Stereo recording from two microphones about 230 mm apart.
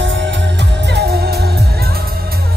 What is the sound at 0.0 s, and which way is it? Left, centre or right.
Music, right.